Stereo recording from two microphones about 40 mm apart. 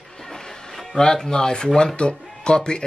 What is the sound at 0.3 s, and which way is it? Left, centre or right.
Music, centre.